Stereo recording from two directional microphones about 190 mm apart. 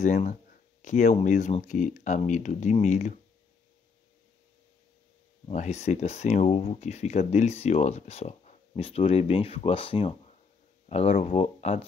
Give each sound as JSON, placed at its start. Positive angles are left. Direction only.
{"t": 0.0, "sound": "speech", "side_deg": 40}
{"t": 5.5, "sound": "speech", "side_deg": 35}